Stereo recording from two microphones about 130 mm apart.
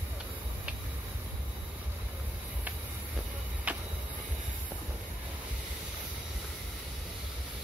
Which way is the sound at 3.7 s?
10° right (ahead or behind).